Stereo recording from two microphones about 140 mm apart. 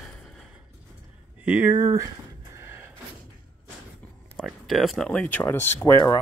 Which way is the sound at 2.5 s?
15° right (ahead or behind).